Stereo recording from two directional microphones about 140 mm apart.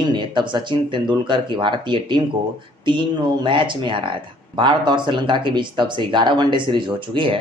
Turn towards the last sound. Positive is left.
turn(degrees=-35)  # may be behind; listen again after turning